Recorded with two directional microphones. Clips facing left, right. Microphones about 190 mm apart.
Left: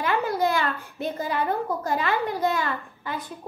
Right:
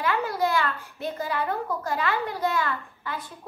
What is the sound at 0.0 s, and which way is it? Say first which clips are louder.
Babbling: left 2 dB; 20° left (ahead or behind).